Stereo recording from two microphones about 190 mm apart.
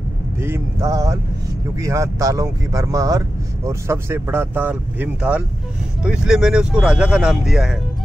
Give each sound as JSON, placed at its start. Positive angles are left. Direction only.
{"t": 0.4, "sound": "speech", "side_deg": -15}